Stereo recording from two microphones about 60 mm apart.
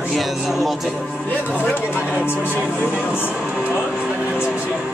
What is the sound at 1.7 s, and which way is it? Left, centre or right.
Speech, left.